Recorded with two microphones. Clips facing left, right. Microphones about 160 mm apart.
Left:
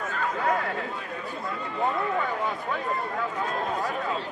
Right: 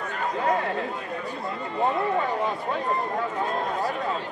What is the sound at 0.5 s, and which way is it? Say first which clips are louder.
A man's voice: right 4 dB; 25° right (ahead or behind).